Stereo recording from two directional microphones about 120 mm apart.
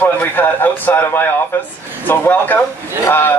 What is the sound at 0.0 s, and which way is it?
A man's voice, 15° left (ahead or behind).